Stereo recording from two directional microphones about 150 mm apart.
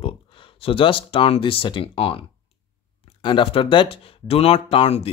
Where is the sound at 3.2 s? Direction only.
35° left (ahead or behind).